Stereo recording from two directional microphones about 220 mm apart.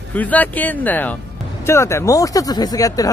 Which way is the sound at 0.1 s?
5° left (ahead or behind).